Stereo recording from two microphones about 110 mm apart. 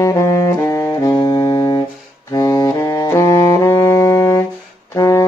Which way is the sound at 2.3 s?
35° left (ahead or behind).